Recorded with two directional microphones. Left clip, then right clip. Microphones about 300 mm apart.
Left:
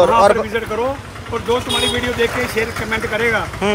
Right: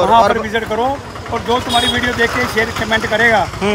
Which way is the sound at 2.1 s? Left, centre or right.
Right.